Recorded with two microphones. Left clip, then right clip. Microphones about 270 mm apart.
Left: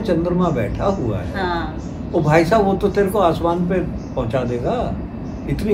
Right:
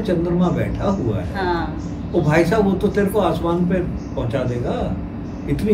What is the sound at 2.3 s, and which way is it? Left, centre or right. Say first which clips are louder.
Speech: left 3 dB; centre.